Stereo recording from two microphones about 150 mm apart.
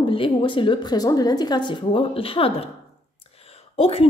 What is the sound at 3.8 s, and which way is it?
Speech, 40° left (ahead or behind).